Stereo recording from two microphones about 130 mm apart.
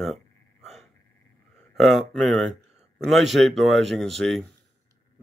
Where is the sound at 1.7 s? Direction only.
Centre (ahead or behind).